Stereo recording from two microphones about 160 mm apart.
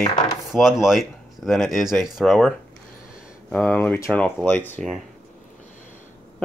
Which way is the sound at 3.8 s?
10° left (ahead or behind).